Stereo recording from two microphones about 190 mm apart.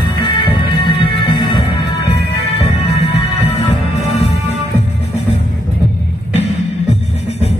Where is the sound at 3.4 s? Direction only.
30° left (ahead or behind).